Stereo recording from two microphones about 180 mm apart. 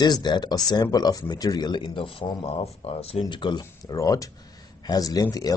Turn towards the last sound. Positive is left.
turn(degrees=20)  # may be behind; listen again after turning